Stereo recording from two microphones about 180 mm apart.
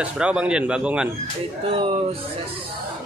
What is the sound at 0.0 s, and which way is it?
A man's voice, 5° right (ahead or behind).